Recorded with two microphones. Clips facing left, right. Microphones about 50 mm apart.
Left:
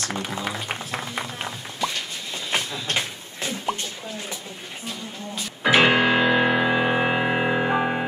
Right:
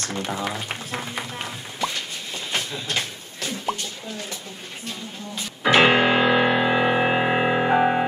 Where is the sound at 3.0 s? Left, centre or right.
Centre.